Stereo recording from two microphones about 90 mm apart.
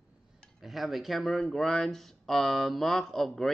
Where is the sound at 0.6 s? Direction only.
Centre (ahead or behind).